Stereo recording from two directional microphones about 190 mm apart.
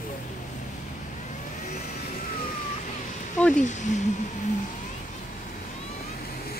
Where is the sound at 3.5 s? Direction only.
40° left (ahead or behind).